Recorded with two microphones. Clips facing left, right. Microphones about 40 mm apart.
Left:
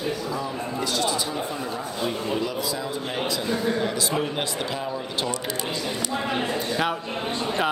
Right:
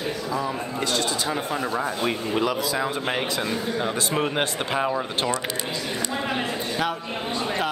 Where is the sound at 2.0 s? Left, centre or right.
Right.